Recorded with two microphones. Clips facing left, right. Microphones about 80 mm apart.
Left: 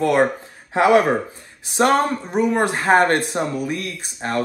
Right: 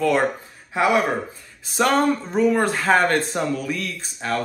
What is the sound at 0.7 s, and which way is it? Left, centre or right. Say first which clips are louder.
Speech: left 5 dB; left.